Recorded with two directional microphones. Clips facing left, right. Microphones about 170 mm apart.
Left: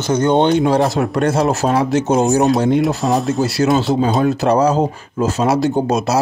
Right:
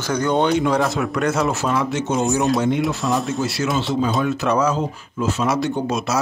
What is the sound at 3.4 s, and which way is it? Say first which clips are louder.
Speech: left 7 dB; 40° left (ahead or behind).